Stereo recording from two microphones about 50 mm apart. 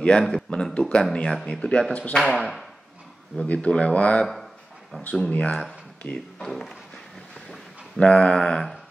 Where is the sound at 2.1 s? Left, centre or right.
Centre.